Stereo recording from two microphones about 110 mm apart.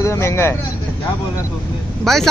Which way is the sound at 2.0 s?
5° left (ahead or behind).